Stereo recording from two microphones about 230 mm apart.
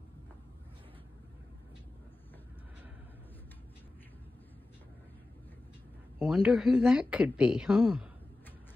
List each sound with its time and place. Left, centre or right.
6.1 s a woman's voice: centre